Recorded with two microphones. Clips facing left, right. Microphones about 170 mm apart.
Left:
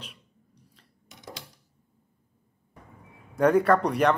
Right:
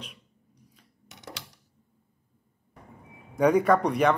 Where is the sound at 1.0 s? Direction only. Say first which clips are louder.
Even; 70° right (ahead or behind).